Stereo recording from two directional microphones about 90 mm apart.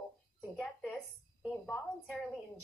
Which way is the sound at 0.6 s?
15° left (ahead or behind).